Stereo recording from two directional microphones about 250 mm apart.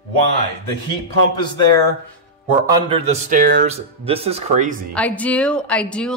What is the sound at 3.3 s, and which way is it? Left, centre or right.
Speech, right.